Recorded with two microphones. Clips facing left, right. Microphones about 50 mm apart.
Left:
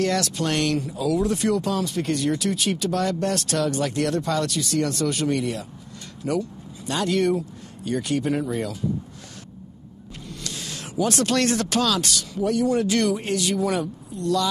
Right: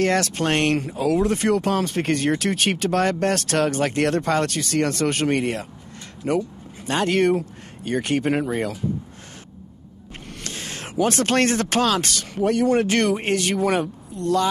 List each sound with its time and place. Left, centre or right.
0.0 s speech: right
10.1 s speech: right